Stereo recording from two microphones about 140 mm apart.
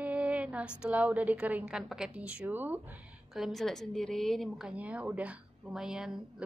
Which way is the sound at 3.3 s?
Centre (ahead or behind).